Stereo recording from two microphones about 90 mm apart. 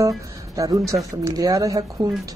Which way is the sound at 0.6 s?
40° right (ahead or behind).